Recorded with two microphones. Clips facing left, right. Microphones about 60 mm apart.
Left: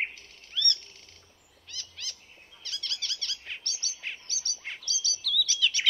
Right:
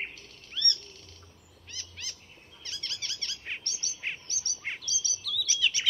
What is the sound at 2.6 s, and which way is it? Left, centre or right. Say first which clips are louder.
Bird: left 2 dB; right.